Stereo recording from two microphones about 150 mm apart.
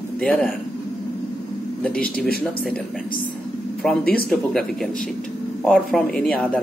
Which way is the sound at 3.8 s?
Centre (ahead or behind).